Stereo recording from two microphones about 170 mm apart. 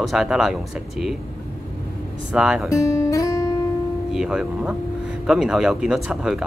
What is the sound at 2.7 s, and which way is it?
Guitar, 20° left (ahead or behind).